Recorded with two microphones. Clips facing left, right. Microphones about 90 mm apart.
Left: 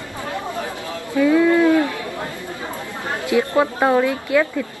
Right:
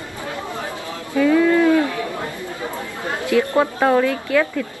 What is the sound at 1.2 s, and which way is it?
Speech, 15° left (ahead or behind).